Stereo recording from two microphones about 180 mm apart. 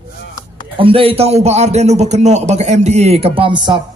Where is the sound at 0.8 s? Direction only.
30° right (ahead or behind).